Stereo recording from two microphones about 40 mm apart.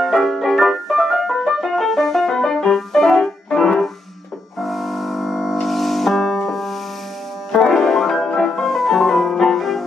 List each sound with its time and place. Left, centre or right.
0.0 s music: centre
8.3 s music: centre
8.6 s music: centre